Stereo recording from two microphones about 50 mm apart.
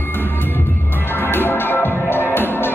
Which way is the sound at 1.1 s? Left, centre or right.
Left.